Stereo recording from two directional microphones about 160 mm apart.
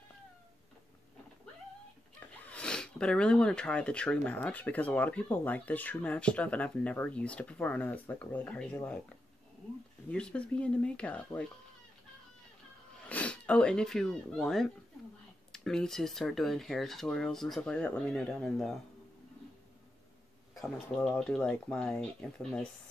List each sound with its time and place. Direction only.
2.1 s speech: 10° left (ahead or behind)
10.0 s speech: 5° left (ahead or behind)
13.1 s speech: 5° left (ahead or behind)
20.5 s speech: 5° left (ahead or behind)